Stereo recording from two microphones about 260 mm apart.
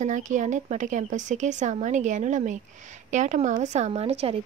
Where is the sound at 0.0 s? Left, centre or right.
Right.